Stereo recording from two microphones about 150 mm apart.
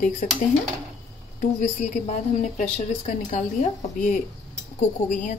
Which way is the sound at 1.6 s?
50° left (ahead or behind).